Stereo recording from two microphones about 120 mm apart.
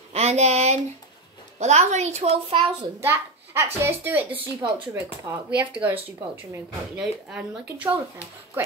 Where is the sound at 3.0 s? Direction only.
20° right (ahead or behind).